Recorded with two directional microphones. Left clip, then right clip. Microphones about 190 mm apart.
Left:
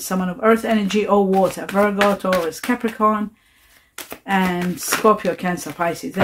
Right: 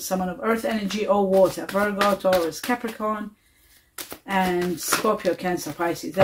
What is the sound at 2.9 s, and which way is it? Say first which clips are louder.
Speech: left 9 dB; 50° left (ahead or behind).